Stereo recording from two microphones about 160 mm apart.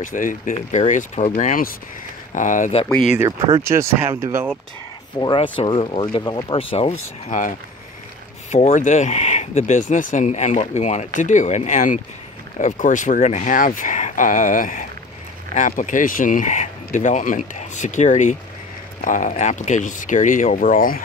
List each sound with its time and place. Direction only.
0.0 s speech: 55° left (ahead or behind)
1.3 s speech: 60° left (ahead or behind)
3.6 s speech: 15° right (ahead or behind)
5.2 s speech: 30° left (ahead or behind)
7.2 s speech: 55° left (ahead or behind)